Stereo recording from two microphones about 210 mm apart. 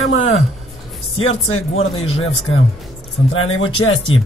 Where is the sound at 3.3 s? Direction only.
75° left (ahead or behind).